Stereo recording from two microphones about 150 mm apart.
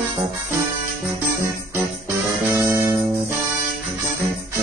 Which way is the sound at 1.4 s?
20° right (ahead or behind).